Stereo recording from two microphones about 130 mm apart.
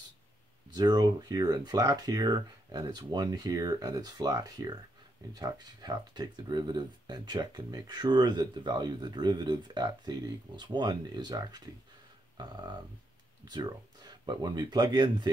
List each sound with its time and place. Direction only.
0.7 s speech: 30° right (ahead or behind)